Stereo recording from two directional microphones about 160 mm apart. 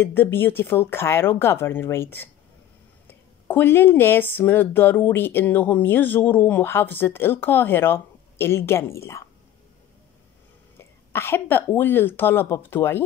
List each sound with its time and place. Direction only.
0.0 s speech: 15° left (ahead or behind)
10.8 s speech: 15° left (ahead or behind)